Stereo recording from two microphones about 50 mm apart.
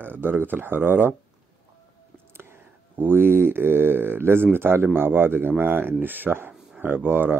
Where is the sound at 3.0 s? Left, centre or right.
Right.